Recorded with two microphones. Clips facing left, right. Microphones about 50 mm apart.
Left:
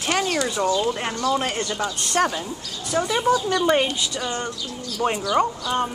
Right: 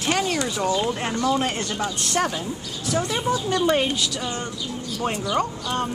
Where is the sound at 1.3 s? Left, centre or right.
Centre.